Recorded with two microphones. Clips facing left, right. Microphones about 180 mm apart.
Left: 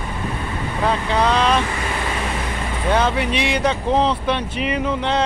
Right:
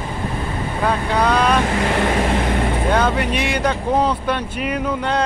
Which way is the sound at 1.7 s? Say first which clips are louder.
Right 7 dB; 65° right (ahead or behind).